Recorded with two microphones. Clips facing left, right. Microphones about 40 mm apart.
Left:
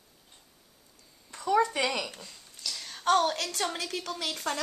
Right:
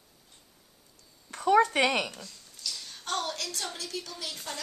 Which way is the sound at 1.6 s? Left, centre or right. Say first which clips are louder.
Right 2 dB; right.